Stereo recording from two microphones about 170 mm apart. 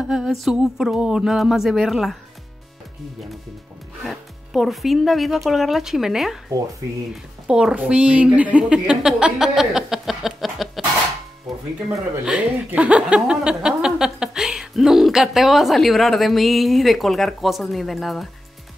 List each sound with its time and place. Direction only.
0.0 s speech: centre (ahead or behind)
4.0 s speech: centre (ahead or behind)
7.4 s a woman's voice: 5° right (ahead or behind)
11.5 s music: centre (ahead or behind)
12.3 s speech: 5° right (ahead or behind)